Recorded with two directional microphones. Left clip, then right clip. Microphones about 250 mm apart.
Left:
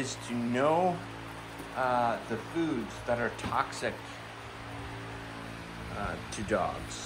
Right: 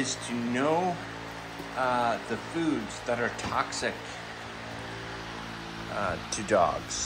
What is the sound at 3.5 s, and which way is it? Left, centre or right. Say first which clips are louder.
Speech: right 1 dB; centre.